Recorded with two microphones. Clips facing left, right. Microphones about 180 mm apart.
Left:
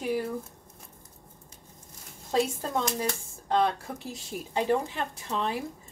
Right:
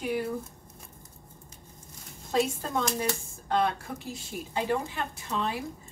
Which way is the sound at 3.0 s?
35° left (ahead or behind).